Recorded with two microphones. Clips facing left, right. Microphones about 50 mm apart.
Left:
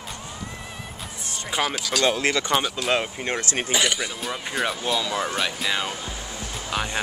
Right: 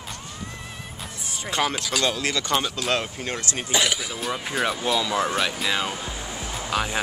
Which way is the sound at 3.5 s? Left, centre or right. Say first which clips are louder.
Left 3 dB; left.